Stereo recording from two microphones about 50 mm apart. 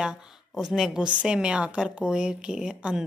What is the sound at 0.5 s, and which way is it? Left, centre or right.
Speech, centre.